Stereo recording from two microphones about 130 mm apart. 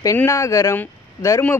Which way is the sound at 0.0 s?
25° left (ahead or behind).